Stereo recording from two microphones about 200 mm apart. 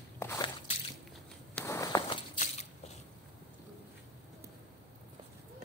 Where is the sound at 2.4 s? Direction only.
35° left (ahead or behind).